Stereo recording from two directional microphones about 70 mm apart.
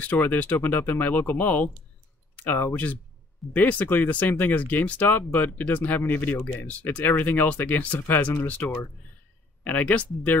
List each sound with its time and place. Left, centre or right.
0.0 s speech: left
2.7 s speech: left